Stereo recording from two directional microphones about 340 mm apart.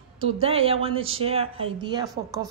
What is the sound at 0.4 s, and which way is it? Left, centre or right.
Speech, centre.